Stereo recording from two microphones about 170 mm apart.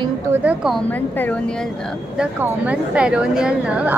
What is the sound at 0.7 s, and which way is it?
Speech, 10° left (ahead or behind).